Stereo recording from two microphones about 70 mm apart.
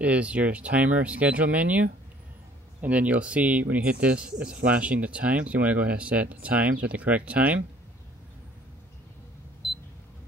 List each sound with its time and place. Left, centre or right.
0.0 s speech: centre
9.6 s camera: centre